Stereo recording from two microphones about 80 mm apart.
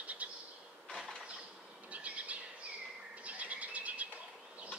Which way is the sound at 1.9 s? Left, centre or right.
Centre.